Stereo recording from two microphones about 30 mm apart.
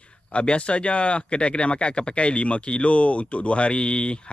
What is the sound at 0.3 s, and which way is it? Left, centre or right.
Speech, left.